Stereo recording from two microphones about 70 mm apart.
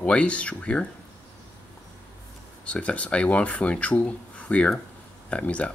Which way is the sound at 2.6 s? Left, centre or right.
Centre.